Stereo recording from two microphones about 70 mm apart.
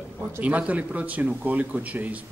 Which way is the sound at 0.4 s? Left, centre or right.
Centre.